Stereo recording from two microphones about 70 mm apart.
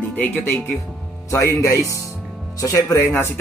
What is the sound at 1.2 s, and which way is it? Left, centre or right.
Speech, left.